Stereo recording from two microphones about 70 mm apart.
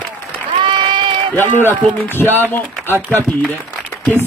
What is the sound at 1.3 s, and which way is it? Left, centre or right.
Speech, left.